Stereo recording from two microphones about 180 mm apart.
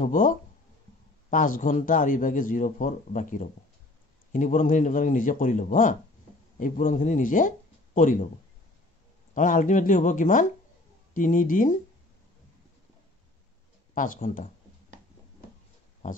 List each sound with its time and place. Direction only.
0.0 s a man's voice: 45° left (ahead or behind)
9.3 s a man's voice: 45° left (ahead or behind)
13.9 s a man's voice: 45° left (ahead or behind)